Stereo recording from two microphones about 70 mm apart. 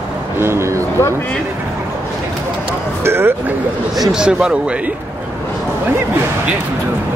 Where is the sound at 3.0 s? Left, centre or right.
Right.